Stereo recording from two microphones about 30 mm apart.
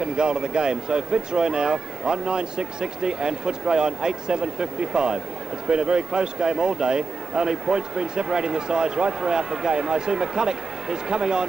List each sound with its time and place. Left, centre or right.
0.0 s a man's voice: right